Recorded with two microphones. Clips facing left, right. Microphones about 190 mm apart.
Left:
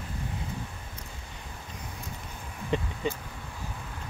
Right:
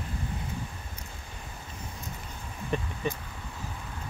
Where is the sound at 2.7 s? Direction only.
20° left (ahead or behind).